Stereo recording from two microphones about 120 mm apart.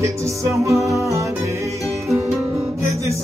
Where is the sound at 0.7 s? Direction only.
25° right (ahead or behind).